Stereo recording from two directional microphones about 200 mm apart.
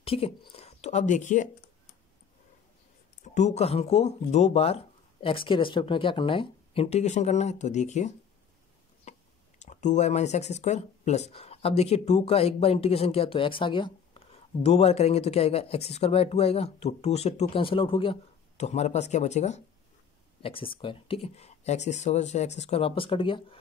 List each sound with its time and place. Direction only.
0.0 s speech: 30° left (ahead or behind)
3.3 s speech: 35° left (ahead or behind)
9.1 s a sound: 35° left (ahead or behind)
9.6 s speech: 35° left (ahead or behind)